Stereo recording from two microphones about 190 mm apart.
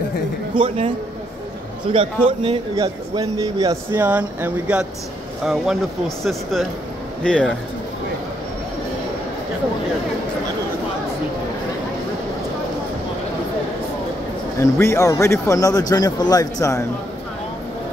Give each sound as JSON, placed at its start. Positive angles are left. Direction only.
{"t": 0.6, "sound": "a man's voice", "side_deg": -25}
{"t": 14.6, "sound": "speech", "side_deg": 15}